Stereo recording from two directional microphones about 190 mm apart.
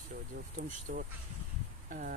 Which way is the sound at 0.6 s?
45° right (ahead or behind).